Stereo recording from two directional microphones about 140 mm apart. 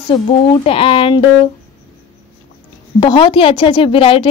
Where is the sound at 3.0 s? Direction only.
35° left (ahead or behind).